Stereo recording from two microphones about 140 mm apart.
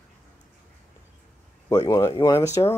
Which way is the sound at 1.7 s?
25° left (ahead or behind).